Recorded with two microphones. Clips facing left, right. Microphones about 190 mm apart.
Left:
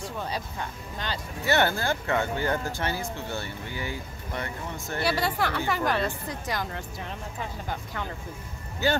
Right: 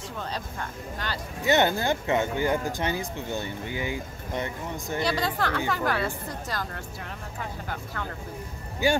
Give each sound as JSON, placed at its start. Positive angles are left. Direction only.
{"t": 0.2, "sound": "a woman's voice", "side_deg": 15}
{"t": 1.4, "sound": "speech", "side_deg": -20}
{"t": 5.0, "sound": "a woman's voice", "side_deg": 10}
{"t": 8.8, "sound": "speech", "side_deg": -10}